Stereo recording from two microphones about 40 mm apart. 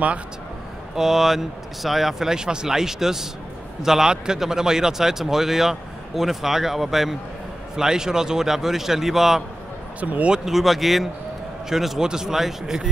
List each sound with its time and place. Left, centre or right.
0.9 s speech: centre
9.9 s speech: right
10.4 s speech: centre